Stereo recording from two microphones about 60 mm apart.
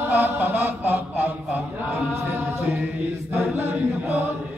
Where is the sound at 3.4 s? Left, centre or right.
Right.